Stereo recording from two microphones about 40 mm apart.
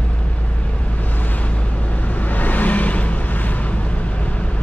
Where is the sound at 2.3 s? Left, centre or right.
Left.